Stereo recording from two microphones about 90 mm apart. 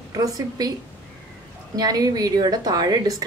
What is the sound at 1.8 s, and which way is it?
Speech, 45° right (ahead or behind).